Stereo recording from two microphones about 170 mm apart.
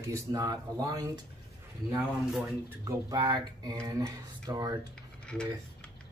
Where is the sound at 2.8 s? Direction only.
25° right (ahead or behind).